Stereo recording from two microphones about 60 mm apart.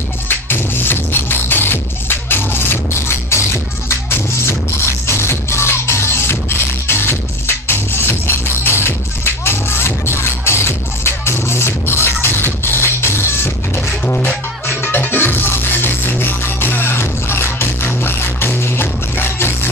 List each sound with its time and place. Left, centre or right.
0.3 s music: left
14.0 s music: left